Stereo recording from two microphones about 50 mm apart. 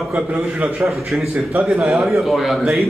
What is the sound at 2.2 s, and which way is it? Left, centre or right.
Speech, centre.